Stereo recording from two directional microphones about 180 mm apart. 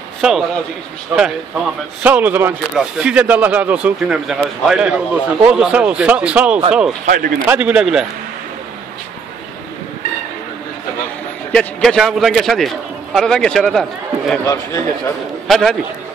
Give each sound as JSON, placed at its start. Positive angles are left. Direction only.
{"t": 0.2, "sound": "a man's voice", "side_deg": -5}
{"t": 7.1, "sound": "a man's voice", "side_deg": -50}
{"t": 7.4, "sound": "speech", "side_deg": -10}
{"t": 11.5, "sound": "a man's voice", "side_deg": 0}
{"t": 14.4, "sound": "a man's voice", "side_deg": 20}
{"t": 15.4, "sound": "a man's voice", "side_deg": 0}